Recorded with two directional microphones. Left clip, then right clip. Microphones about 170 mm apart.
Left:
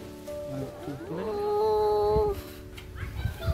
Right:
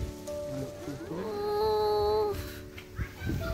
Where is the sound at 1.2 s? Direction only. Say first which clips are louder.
Left 3 dB; 5° right (ahead or behind).